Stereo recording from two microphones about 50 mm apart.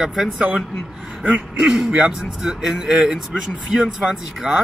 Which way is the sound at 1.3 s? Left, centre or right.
Right.